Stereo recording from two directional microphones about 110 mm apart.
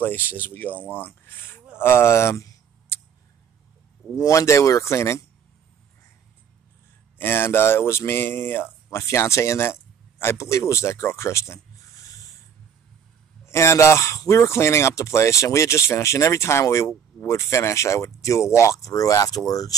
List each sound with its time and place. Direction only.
0.0 s speech: 20° left (ahead or behind)
4.2 s speech: 30° left (ahead or behind)
7.2 s speech: 20° left (ahead or behind)
13.5 s speech: 25° left (ahead or behind)